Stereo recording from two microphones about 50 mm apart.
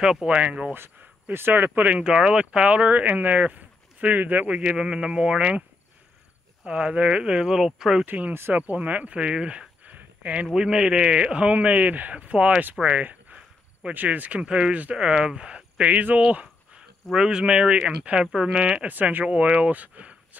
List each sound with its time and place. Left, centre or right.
0.0 s speech: centre
1.3 s speech: right
2.0 s speech: centre
6.6 s speech: centre
8.0 s speech: right
9.9 s a sound: right
10.5 s speech: centre
13.8 s speech: right
14.4 s speech: right
15.0 s speech: centre
16.2 s speech: right
18.9 s speech: right